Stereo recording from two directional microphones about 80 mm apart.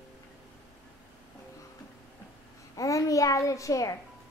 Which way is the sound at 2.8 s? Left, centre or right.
Left.